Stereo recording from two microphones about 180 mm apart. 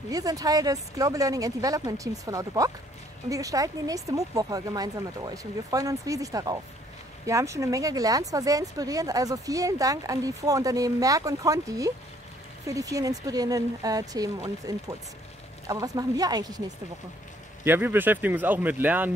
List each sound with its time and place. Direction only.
0.1 s speech: 20° right (ahead or behind)
17.6 s speech: 10° right (ahead or behind)